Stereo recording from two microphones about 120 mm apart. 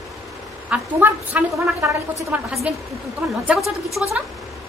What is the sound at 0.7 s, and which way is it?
A woman's voice, 15° right (ahead or behind).